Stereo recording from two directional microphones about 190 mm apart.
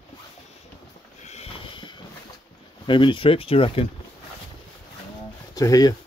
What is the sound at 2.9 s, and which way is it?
Speech, 25° left (ahead or behind).